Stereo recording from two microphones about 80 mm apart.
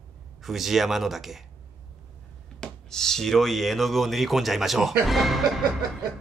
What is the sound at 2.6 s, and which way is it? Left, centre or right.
Speech, centre.